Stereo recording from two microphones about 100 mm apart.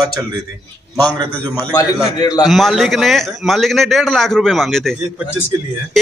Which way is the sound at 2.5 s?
Centre (ahead or behind).